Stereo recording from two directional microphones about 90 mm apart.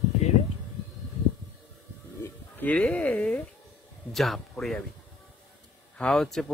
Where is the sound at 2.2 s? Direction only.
20° left (ahead or behind).